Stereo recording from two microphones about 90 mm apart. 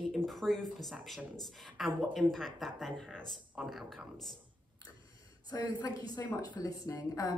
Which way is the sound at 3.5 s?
5° right (ahead or behind).